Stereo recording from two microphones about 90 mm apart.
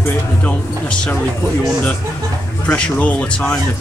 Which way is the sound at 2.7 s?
15° left (ahead or behind).